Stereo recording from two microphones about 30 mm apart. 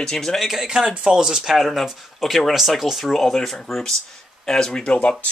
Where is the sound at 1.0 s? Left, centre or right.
Right.